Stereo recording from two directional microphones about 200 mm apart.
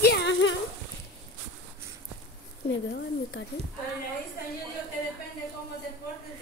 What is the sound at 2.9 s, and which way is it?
Speech, 60° left (ahead or behind).